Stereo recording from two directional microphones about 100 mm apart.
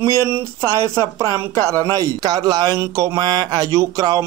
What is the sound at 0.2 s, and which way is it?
A man's voice, 25° right (ahead or behind).